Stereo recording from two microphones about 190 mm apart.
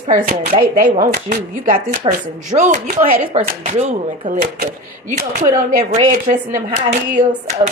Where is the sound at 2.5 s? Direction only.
40° right (ahead or behind).